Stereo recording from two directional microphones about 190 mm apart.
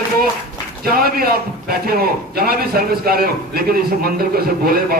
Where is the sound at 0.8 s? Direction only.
50° right (ahead or behind).